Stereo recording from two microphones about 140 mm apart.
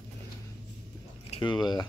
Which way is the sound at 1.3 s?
35° left (ahead or behind).